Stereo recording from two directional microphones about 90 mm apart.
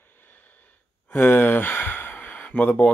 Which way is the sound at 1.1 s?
20° left (ahead or behind).